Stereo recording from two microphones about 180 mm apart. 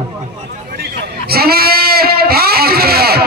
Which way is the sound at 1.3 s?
60° right (ahead or behind).